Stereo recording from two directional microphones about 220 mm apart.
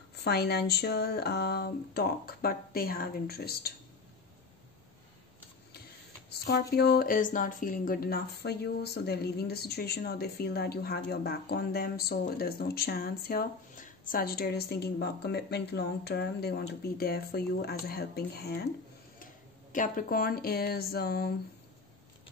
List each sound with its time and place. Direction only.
0.1 s speech: 45° left (ahead or behind)
6.4 s speech: 45° left (ahead or behind)
19.7 s speech: 35° left (ahead or behind)